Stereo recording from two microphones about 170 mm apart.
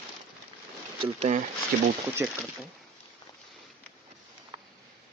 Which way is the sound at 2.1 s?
10° right (ahead or behind).